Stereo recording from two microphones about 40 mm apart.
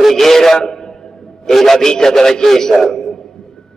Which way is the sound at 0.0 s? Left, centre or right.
Centre.